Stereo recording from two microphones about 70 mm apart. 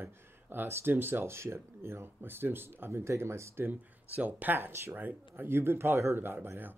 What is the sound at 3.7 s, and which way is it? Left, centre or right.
Speech, right.